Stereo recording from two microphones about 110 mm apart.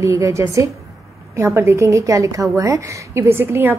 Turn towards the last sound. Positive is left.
turn(degrees=-20)  # may be behind; listen again after turning